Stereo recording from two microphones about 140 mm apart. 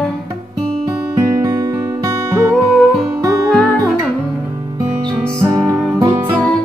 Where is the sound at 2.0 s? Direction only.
20° right (ahead or behind).